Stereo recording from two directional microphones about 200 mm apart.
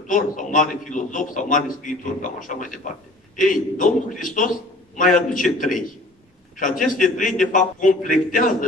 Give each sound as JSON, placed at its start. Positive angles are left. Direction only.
{"t": 0.0, "sound": "a man's voice", "side_deg": 40}